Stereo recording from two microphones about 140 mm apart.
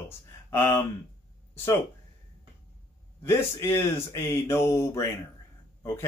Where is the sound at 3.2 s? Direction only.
15° left (ahead or behind).